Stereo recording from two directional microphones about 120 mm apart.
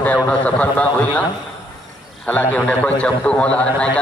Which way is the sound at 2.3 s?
15° left (ahead or behind).